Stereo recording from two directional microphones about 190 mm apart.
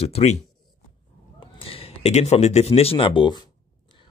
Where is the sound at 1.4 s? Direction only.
30° left (ahead or behind).